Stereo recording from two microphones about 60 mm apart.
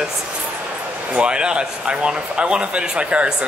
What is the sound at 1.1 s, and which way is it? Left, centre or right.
Speech, centre.